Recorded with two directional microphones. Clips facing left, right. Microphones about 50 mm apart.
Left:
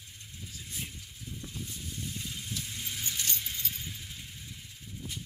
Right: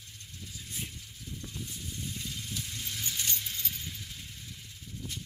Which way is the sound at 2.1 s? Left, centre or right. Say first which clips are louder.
Even; centre.